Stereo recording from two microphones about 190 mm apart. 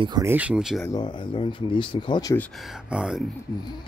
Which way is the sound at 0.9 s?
25° left (ahead or behind).